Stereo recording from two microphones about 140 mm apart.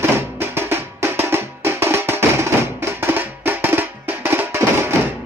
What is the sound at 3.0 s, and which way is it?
Drum, 15° right (ahead or behind).